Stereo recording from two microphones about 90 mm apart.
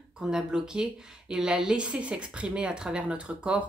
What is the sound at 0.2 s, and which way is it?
Speech, 10° right (ahead or behind).